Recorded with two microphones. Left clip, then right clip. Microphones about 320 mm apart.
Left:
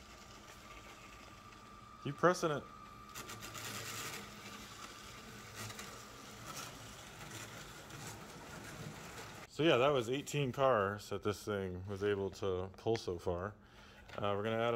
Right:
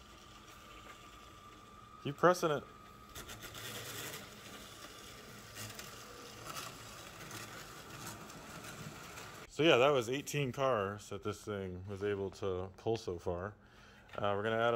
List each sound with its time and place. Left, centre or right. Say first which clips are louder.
2.0 s speech: right 3 dB; centre
9.6 s speech: right 3 dB; centre